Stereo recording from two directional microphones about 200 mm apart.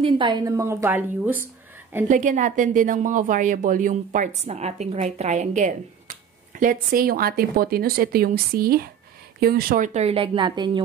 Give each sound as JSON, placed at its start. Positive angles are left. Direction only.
{"t": 0.0, "sound": "a woman's voice", "side_deg": -20}
{"t": 2.0, "sound": "a woman's voice", "side_deg": -40}
{"t": 9.9, "sound": "a woman's voice", "side_deg": -30}